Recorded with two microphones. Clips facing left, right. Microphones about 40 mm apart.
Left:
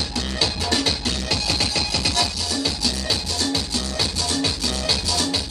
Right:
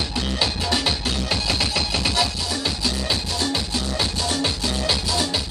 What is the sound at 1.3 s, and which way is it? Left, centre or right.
Music, right.